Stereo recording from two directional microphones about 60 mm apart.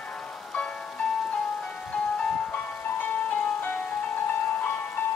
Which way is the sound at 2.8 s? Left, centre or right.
Left.